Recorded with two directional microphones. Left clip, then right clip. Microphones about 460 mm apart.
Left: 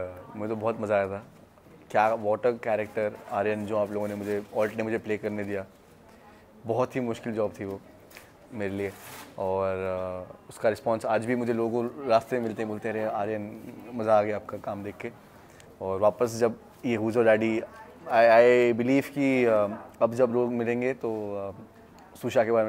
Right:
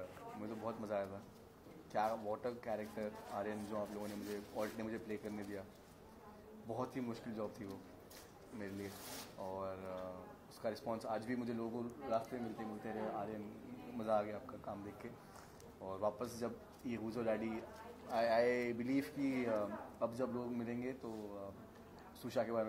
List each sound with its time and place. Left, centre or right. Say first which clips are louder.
0.4 s speech: left 17 dB; left
6.7 s speech: left 16 dB; left
9.4 s speech: left 18 dB; left